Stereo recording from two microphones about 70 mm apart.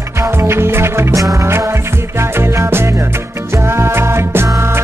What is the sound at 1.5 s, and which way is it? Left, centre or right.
Music, right.